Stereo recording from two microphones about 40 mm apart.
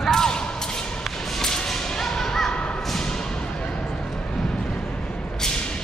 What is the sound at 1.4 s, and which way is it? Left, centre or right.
Whip, centre.